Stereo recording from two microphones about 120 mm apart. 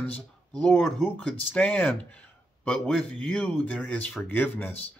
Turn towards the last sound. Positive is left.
turn(degrees=15)  # may be behind; listen again after turning